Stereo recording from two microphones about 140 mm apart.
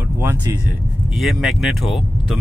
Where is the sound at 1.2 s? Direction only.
Centre (ahead or behind).